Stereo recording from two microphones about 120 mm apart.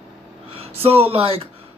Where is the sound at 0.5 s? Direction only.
55° right (ahead or behind).